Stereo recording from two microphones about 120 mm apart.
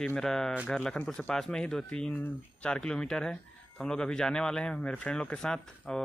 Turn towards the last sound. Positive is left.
turn(degrees=5)  # may be behind; listen again after turning